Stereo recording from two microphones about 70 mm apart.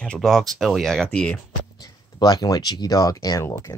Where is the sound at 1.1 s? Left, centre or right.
Centre.